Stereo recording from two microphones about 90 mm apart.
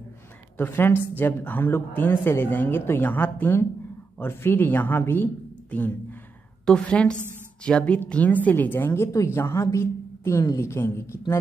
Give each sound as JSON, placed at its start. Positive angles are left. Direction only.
{"t": 0.6, "sound": "a woman's voice", "side_deg": 25}